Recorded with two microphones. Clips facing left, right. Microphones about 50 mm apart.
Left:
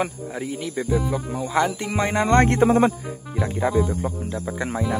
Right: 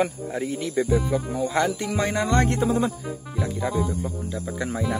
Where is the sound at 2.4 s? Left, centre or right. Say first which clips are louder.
Left 5 dB; left.